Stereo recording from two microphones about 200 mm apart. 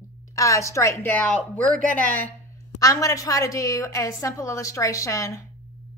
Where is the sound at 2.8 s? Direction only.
15° left (ahead or behind).